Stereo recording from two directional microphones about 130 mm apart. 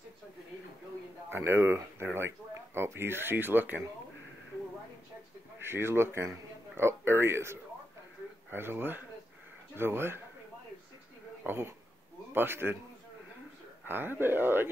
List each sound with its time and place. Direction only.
1.3 s speech: 20° right (ahead or behind)
5.6 s speech: 20° right (ahead or behind)
11.4 s speech: 20° right (ahead or behind)
13.8 s speech: 15° right (ahead or behind)